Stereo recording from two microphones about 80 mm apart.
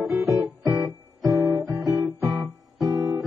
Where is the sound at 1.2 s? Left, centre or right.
Right.